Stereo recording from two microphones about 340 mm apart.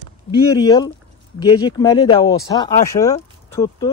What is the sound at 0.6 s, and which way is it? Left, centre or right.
Speech, centre.